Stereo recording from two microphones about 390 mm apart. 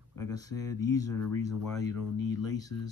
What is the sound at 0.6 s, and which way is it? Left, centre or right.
Speech, left.